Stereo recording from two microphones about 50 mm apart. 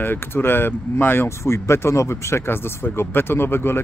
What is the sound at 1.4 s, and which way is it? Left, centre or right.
Speech, left.